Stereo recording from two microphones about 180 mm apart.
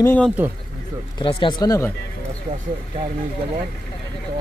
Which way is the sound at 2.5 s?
45° right (ahead or behind).